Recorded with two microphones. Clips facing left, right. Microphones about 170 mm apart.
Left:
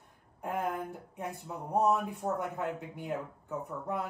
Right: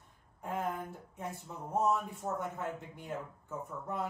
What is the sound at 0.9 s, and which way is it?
Speech, 65° left (ahead or behind).